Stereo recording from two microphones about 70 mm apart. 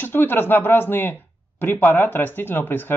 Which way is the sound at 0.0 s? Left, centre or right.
Left.